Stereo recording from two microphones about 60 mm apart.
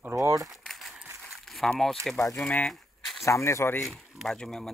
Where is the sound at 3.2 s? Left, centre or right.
Left.